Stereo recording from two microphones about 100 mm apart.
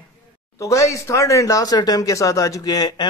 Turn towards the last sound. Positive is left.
turn(degrees=40)  # may be behind; listen again after turning